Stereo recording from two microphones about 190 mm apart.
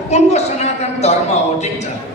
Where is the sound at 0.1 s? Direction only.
35° left (ahead or behind).